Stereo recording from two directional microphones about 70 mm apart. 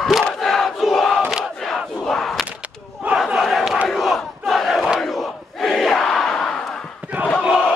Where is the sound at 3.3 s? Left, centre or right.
Centre.